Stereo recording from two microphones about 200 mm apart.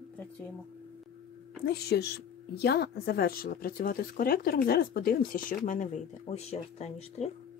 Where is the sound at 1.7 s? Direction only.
55° left (ahead or behind); by 7.2 s 35° left (ahead or behind).